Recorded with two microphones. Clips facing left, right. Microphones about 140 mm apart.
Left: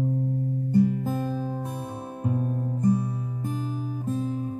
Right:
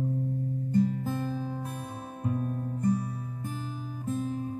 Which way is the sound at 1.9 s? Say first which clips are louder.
Left 3 dB; 30° left (ahead or behind).